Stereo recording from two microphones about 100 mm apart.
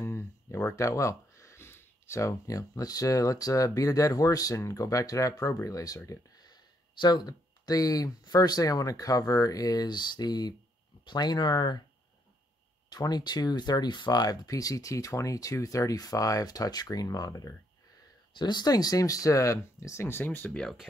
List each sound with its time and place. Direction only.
0.0 s speech: 30° left (ahead or behind); by 11.8 s 45° left (ahead or behind)
12.9 s speech: 40° left (ahead or behind)
18.4 s speech: 45° left (ahead or behind); by 20.6 s 15° left (ahead or behind)